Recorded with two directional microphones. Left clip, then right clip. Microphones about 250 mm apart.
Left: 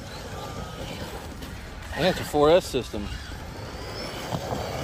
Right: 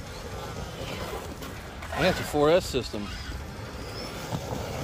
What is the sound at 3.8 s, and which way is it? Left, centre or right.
Vehicle, centre.